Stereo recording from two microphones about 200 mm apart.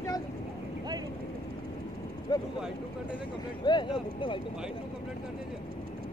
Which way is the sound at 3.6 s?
25° left (ahead or behind).